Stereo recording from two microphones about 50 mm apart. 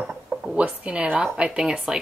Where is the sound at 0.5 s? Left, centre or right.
Right; by 2.0 s centre.